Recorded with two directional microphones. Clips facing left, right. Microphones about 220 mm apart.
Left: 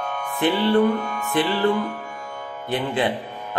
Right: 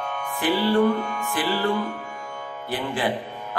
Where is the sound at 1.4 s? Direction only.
25° left (ahead or behind).